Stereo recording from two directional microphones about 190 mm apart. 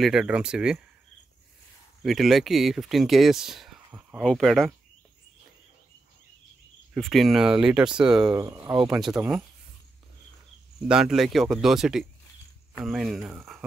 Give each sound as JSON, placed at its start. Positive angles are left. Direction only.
{"t": 0.0, "sound": "speech", "side_deg": -5}
{"t": 2.0, "sound": "speech", "side_deg": 0}
{"t": 6.9, "sound": "speech", "side_deg": 0}
{"t": 8.4, "sound": "speech", "side_deg": -15}
{"t": 8.9, "sound": "speech", "side_deg": -5}
{"t": 10.8, "sound": "speech", "side_deg": -5}